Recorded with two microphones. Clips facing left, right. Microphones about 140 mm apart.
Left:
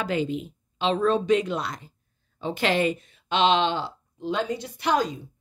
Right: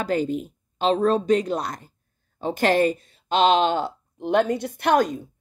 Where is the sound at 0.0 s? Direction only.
45° right (ahead or behind).